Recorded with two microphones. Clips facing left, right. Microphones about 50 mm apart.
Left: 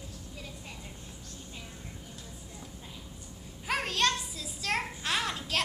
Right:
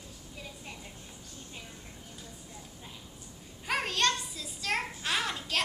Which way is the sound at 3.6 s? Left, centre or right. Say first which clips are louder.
Even; centre.